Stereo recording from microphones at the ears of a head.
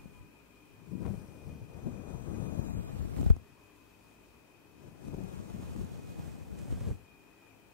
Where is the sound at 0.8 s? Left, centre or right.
Left.